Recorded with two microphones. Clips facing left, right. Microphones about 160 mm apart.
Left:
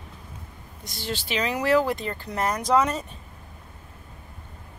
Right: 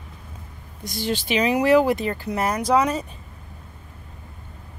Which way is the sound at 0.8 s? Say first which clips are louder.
Right 7 dB; 15° right (ahead or behind).